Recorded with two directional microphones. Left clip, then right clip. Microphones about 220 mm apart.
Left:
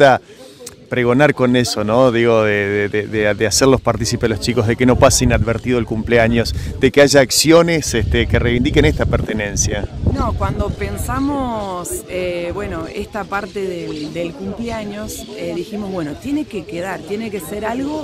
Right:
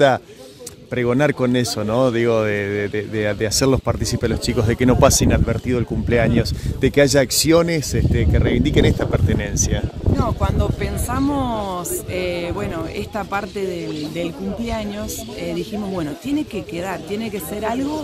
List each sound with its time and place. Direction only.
0.9 s speech: 30° left (ahead or behind); by 17.8 s centre (ahead or behind)